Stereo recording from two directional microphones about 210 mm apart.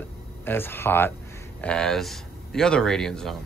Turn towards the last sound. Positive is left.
turn(degrees=0)  # may be behind; listen again after turning